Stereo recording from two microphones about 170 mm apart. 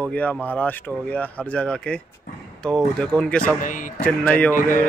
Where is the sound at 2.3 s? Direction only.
75° left (ahead or behind).